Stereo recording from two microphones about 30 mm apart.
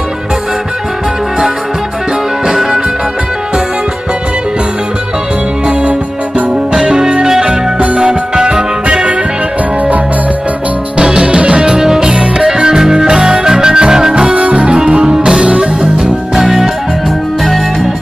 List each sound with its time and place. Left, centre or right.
2.4 s music: centre
5.7 s music: right
11.0 s music: right; by 14.3 s centre
14.3 s music: right
14.7 s music: right
15.5 s music: right
16.0 s music: centre